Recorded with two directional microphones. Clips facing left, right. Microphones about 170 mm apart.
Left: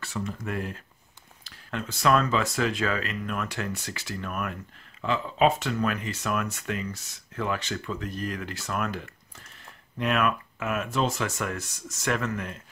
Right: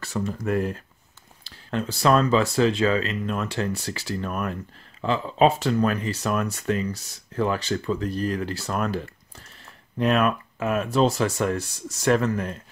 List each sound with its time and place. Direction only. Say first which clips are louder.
0.0 s speech: right 5 dB; 40° right (ahead or behind)